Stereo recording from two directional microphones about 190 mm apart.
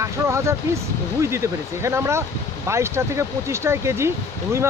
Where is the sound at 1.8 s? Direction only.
15° right (ahead or behind).